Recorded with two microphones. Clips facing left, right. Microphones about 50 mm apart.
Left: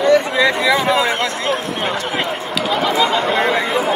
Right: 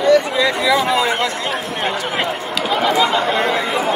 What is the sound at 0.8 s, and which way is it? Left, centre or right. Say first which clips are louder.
Speech: left 1 dB; centre.